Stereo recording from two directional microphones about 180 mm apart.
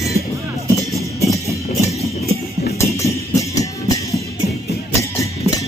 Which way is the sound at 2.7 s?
15° left (ahead or behind).